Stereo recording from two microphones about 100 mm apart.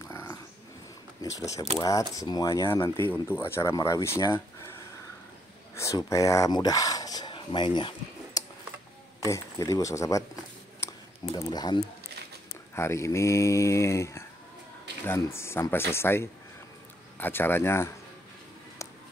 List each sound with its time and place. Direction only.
0.0 s dog: 30° left (ahead or behind)
1.2 s speech: 35° left (ahead or behind)
3.0 s speech: 20° left (ahead or behind)
5.8 s speech: 30° left (ahead or behind); by 7.9 s 50° left (ahead or behind)
9.2 s speech: 30° left (ahead or behind)
11.3 s speech: 40° left (ahead or behind)
12.7 s speech: 25° left (ahead or behind)